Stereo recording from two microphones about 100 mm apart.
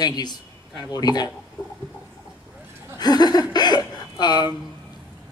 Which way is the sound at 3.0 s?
45° left (ahead or behind).